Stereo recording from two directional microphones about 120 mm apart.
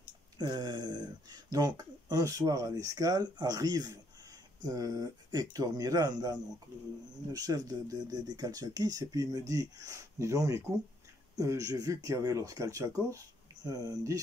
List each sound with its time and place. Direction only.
0.4 s speech: 35° right (ahead or behind)